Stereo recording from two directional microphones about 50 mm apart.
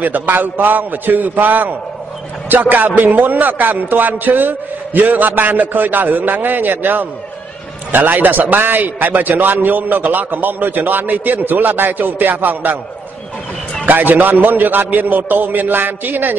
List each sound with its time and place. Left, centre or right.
0.0 s a man's voice: right
13.8 s a man's voice: right